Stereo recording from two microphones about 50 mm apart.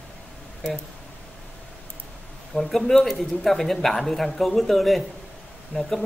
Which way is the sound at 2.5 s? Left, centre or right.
Centre.